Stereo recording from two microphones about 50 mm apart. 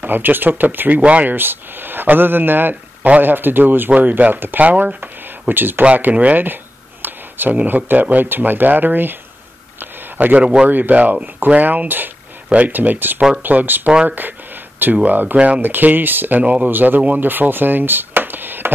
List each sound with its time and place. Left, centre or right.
0.0 s speech: right
1.3 s speech: right
2.7 s a sound: right
3.2 s speech: right
3.9 s speech: right
6.1 s speech: right
6.4 s a sound: right
7.6 s speech: right
10.1 s speech: right
15.3 s speech: right
15.6 s speech: right